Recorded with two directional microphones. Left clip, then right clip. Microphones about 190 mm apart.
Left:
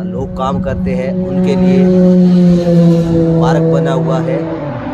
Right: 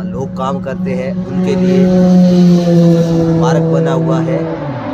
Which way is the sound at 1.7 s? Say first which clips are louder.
Left 1 dB; 60° right (ahead or behind).